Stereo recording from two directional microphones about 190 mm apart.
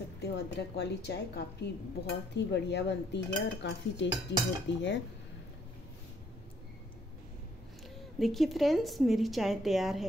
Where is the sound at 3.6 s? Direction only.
65° left (ahead or behind).